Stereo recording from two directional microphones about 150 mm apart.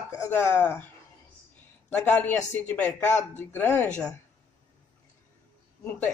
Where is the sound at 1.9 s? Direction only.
10° left (ahead or behind).